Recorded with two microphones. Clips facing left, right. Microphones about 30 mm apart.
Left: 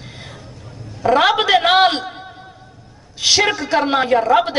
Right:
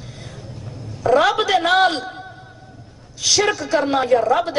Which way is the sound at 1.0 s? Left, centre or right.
Left.